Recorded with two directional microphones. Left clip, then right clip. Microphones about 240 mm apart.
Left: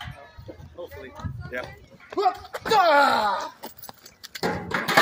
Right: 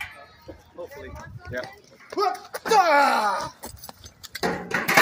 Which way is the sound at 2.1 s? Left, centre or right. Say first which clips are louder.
Left 1 dB; centre.